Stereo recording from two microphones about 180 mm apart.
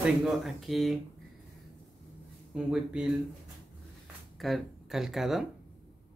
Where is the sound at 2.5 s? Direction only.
5° right (ahead or behind).